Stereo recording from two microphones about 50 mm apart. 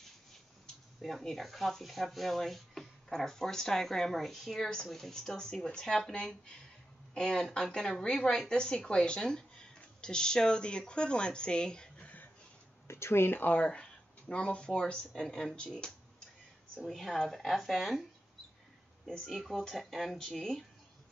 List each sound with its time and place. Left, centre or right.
1.0 s speech: centre
12.8 s speech: left
13.6 s speech: centre
16.7 s speech: centre
19.0 s speech: centre